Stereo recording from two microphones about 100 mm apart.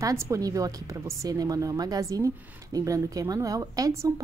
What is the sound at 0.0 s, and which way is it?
A woman's voice, 35° right (ahead or behind).